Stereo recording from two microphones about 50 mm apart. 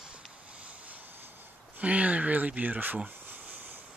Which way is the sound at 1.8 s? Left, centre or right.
Right.